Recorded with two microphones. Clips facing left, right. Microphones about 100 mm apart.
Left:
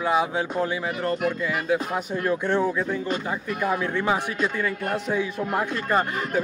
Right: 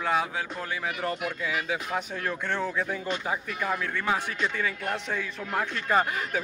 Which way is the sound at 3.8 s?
20° left (ahead or behind).